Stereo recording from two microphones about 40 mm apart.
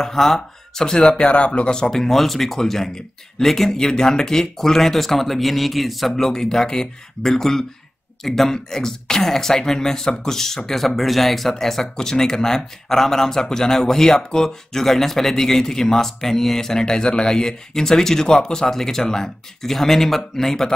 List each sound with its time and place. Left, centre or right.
0.0 s speech: centre; by 1.7 s left
1.7 s speech: centre